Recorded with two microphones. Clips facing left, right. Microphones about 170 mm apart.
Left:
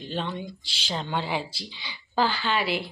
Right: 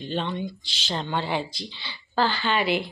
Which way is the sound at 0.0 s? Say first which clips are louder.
Right 3 dB; 5° left (ahead or behind).